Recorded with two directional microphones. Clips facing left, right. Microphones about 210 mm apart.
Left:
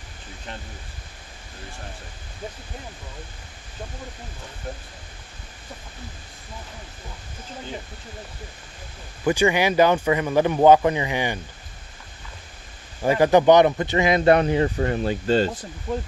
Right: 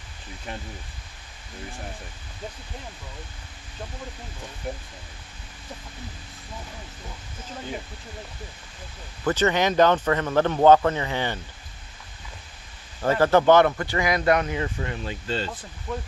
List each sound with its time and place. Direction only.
4.7 s speech: 15° right (ahead or behind)
9.2 s speech: 10° left (ahead or behind)
13.0 s a man's voice: 15° left (ahead or behind); by 15.5 s 45° left (ahead or behind)